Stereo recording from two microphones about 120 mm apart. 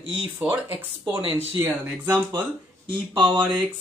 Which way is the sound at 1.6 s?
20° right (ahead or behind).